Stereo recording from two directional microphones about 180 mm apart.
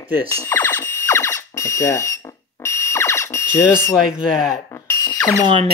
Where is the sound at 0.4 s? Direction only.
10° left (ahead or behind).